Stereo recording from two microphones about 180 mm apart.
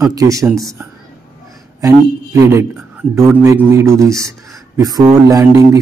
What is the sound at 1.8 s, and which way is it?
A man's voice, 20° right (ahead or behind).